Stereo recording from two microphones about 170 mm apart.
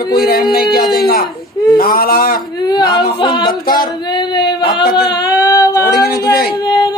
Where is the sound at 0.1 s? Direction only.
65° left (ahead or behind).